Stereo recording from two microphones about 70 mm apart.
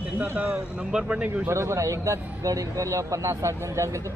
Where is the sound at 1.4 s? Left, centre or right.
Right.